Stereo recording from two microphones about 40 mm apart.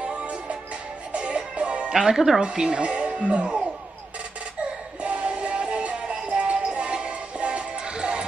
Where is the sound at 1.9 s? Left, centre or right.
Centre.